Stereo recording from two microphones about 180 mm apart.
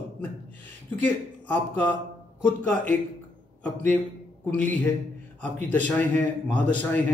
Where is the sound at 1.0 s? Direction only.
10° left (ahead or behind).